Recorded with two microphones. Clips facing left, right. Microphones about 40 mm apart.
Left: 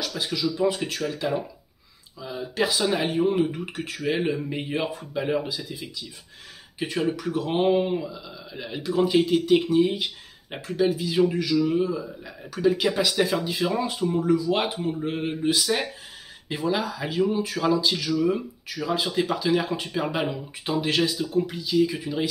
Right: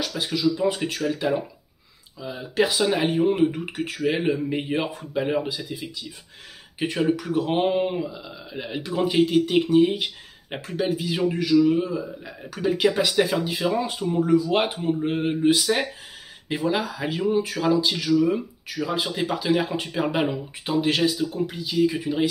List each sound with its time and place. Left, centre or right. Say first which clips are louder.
0.1 s speech: right 3 dB; centre
14.2 s speech: right 4 dB; right